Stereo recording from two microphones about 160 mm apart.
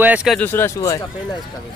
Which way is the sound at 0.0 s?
5° right (ahead or behind).